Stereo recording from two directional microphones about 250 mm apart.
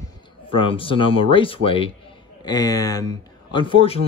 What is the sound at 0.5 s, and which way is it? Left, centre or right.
Speech, left.